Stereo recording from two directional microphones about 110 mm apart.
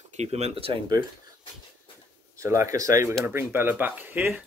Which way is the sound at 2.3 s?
25° right (ahead or behind).